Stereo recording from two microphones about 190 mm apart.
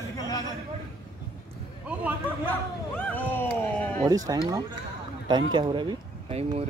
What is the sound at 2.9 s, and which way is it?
Cat, 10° left (ahead or behind).